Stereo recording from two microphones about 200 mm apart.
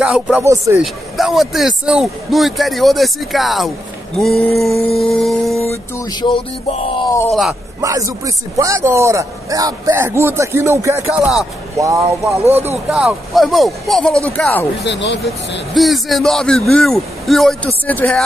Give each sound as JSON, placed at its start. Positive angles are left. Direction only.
{"t": 0.0, "sound": "speech", "side_deg": -5}
{"t": 1.1, "sound": "a man's voice", "side_deg": 0}
{"t": 4.9, "sound": "music", "side_deg": 0}
{"t": 5.7, "sound": "a sound", "side_deg": 15}
{"t": 7.2, "sound": "a man's voice", "side_deg": 0}
{"t": 7.8, "sound": "a man's voice", "side_deg": -15}
{"t": 14.9, "sound": "speech", "side_deg": 60}
{"t": 15.7, "sound": "a man's voice", "side_deg": 0}